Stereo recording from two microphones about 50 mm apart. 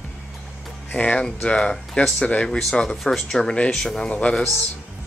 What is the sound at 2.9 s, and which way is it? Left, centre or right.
Speech, centre.